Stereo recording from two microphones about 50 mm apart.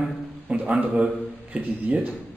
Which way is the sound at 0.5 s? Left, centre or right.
Right.